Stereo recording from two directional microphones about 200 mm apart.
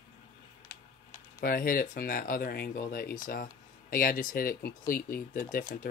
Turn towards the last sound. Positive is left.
turn(degrees=45)  # may be behind; listen again after turning